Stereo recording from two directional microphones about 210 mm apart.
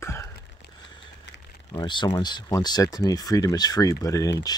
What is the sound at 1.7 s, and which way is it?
Speech, 20° left (ahead or behind).